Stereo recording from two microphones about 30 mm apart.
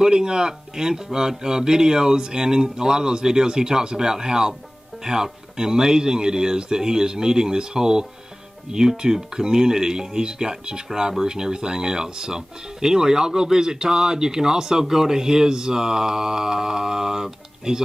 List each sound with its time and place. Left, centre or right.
0.0 s speech: right